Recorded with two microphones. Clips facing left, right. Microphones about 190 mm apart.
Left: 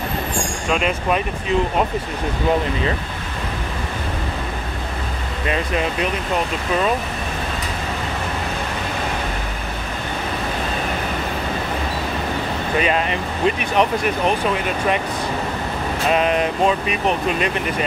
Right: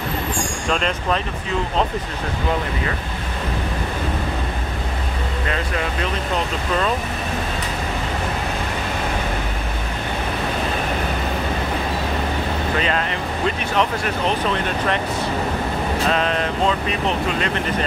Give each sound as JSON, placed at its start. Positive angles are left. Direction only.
{"t": 0.7, "sound": "speech", "side_deg": 10}
{"t": 12.7, "sound": "speech", "side_deg": 15}
{"t": 16.1, "sound": "speech", "side_deg": 15}